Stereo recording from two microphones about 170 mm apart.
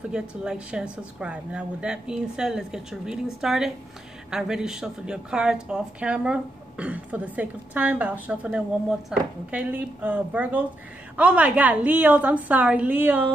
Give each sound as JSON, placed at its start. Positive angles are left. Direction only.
{"t": 0.1, "sound": "a woman's voice", "side_deg": -5}